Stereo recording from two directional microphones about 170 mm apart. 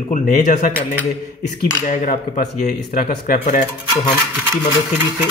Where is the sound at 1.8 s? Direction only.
50° left (ahead or behind).